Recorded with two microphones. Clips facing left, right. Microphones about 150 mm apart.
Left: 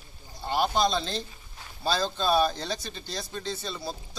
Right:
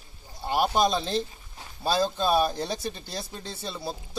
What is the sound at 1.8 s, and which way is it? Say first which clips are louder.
Speech: right 2 dB; 15° right (ahead or behind).